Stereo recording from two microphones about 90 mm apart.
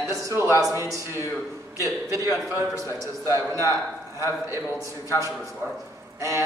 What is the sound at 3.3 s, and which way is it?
A man's voice, 35° right (ahead or behind).